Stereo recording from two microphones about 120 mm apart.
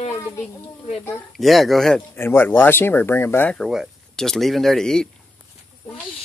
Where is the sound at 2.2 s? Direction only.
20° left (ahead or behind).